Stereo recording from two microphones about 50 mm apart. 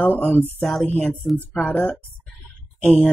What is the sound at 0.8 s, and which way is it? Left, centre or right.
A man's voice, left.